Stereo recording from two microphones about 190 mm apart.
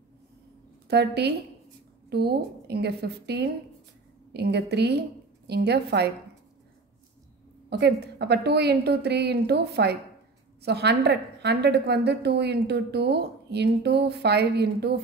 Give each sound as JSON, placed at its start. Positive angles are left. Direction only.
{"t": 0.8, "sound": "a woman's voice", "side_deg": -60}
{"t": 7.7, "sound": "a woman's voice", "side_deg": -65}